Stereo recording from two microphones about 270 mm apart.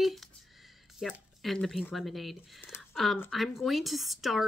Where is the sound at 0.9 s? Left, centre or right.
Centre.